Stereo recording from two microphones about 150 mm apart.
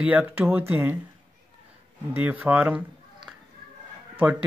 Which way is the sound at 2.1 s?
10° right (ahead or behind).